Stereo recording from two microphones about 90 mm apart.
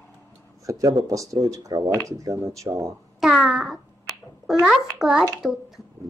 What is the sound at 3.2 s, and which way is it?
A child's voice, 5° right (ahead or behind).